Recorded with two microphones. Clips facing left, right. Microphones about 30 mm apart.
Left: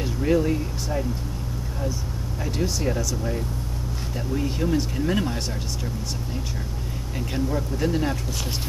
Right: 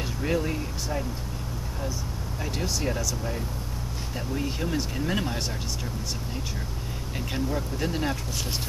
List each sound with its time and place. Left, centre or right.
0.0 s speech: centre
2.4 s speech: centre
7.4 s speech: centre